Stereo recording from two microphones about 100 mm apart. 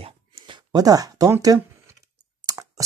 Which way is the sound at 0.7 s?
40° right (ahead or behind).